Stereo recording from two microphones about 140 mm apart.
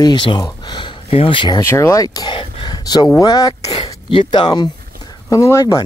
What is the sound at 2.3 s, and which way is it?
Whispering, 35° left (ahead or behind).